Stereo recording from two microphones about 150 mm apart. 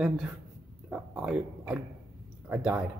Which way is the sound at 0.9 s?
5° right (ahead or behind).